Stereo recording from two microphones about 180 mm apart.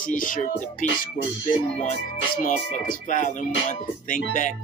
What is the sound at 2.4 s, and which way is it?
Music, 45° left (ahead or behind).